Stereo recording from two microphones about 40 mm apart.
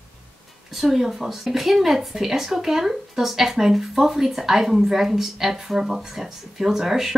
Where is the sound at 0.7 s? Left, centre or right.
Centre.